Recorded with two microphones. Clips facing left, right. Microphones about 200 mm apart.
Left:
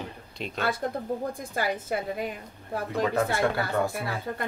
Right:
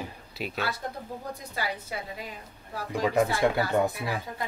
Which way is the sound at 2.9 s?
15° right (ahead or behind).